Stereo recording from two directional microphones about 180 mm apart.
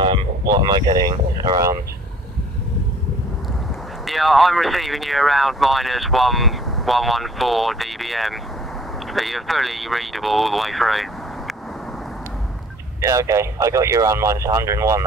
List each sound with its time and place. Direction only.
0.0 s speech: 25° right (ahead or behind)
4.0 s speech: centre (ahead or behind)
13.0 s speech: 15° right (ahead or behind)